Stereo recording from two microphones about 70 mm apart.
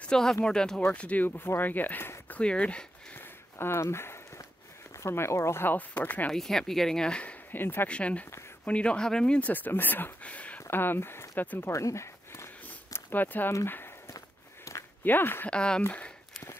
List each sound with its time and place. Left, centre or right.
0.0 s speech: centre
3.2 s a sound: left
4.9 s speech: left
6.3 s speech: centre
7.5 s speech: left
7.9 s speech: centre
9.5 s speech: left
10.7 s speech: left
11.7 s a sound: left
12.9 s speech: left
14.0 s walk: left
15.0 s speech: left
15.5 s speech: centre